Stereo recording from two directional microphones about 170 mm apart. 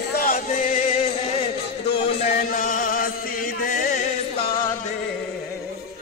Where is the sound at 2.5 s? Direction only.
50° left (ahead or behind).